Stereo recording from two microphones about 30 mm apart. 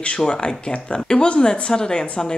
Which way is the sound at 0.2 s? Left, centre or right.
Left.